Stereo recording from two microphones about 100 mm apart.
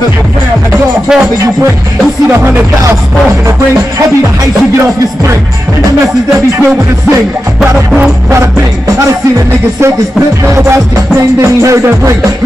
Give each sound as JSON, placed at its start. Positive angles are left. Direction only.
{"t": 1.0, "sound": "speech", "side_deg": -10}
{"t": 10.4, "sound": "music", "side_deg": -30}